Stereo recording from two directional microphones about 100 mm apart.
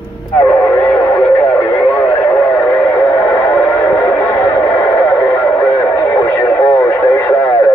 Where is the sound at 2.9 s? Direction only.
25° left (ahead or behind).